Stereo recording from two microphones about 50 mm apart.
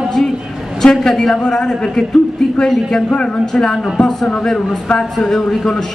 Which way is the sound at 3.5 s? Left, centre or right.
Centre.